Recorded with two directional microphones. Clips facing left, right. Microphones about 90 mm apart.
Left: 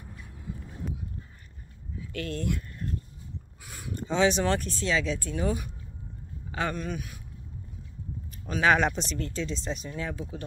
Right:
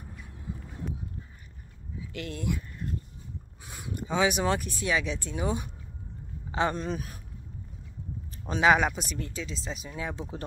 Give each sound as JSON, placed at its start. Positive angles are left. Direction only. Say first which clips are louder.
{"t": 2.1, "sound": "speech", "louder": "left 4 dB", "side_deg": -15}
{"t": 3.6, "sound": "a man's voice", "louder": "left 1 dB", "side_deg": -20}
{"t": 8.5, "sound": "a man's voice", "louder": "right 1 dB", "side_deg": -20}
{"t": 8.7, "sound": "speech", "louder": "left 1 dB", "side_deg": -10}